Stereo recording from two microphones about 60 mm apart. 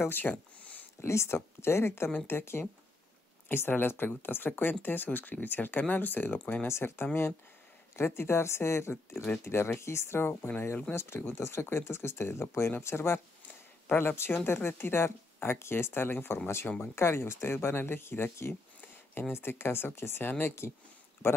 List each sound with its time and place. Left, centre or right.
0.1 s a sound: left
1.0 s speech: left
6.3 s speech: left
6.7 s speech: left